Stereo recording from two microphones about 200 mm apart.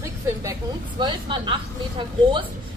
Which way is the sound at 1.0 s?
25° right (ahead or behind).